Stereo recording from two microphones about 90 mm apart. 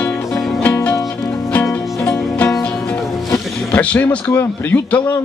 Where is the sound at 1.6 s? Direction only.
30° left (ahead or behind).